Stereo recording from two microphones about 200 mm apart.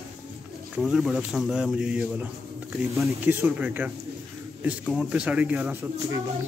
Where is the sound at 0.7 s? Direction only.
5° right (ahead or behind).